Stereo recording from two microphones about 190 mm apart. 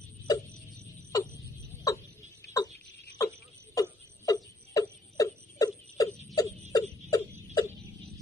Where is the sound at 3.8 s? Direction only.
20° left (ahead or behind).